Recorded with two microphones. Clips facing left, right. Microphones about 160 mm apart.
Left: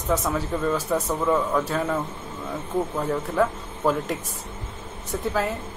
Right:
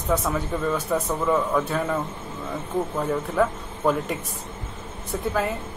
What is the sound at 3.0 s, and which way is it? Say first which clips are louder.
Speech: right 1 dB; centre (ahead or behind).